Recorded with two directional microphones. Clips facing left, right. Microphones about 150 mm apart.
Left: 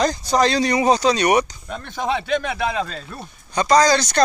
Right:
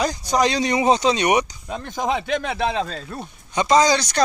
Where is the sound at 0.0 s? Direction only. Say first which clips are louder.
Left 2 dB; 15° right (ahead or behind).